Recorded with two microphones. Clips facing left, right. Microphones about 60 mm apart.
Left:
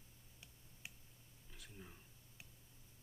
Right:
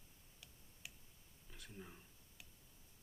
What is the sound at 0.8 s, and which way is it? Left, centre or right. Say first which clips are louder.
Tick: left 1 dB; left.